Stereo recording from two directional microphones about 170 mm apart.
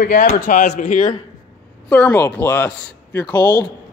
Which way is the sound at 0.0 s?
50° left (ahead or behind).